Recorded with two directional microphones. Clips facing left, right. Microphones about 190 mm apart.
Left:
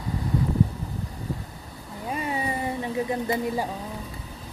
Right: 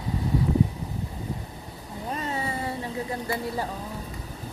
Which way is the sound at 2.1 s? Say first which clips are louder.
Left 2 dB; 15° left (ahead or behind).